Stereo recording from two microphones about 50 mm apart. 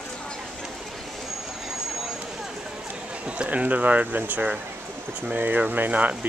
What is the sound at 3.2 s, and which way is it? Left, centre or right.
Speech, right.